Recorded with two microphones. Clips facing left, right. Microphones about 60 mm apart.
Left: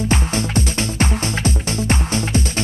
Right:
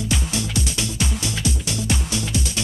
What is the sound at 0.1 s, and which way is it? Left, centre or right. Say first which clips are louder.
Music: left 5 dB; left.